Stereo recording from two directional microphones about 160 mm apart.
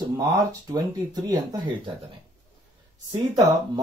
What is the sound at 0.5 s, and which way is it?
Speech, 20° right (ahead or behind).